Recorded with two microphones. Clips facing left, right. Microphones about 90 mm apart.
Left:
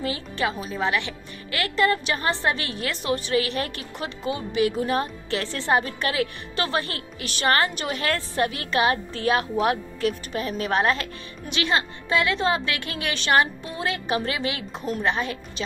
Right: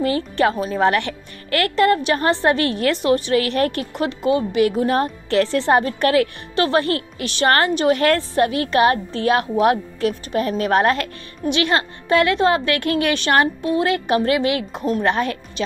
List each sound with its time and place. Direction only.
0.0 s a woman's voice: 45° right (ahead or behind)